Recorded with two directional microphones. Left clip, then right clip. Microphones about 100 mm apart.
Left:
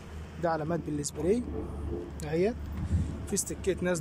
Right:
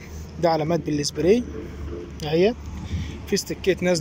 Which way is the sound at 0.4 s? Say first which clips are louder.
Right 9 dB; 10° right (ahead or behind).